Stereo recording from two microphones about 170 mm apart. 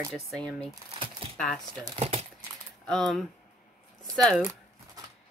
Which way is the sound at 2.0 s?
35° right (ahead or behind).